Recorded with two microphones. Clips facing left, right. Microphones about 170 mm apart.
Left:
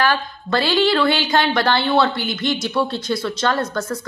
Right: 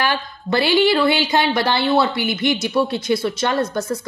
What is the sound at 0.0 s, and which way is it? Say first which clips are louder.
Speech: left 2 dB; 15° right (ahead or behind).